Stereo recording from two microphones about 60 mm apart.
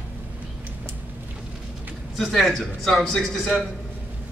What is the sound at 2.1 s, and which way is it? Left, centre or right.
A man's voice, centre.